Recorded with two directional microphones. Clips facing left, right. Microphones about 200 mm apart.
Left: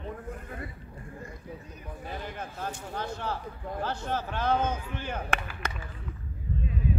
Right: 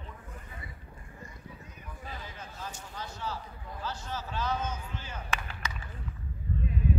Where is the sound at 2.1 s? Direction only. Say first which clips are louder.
Left 7 dB; 60° left (ahead or behind).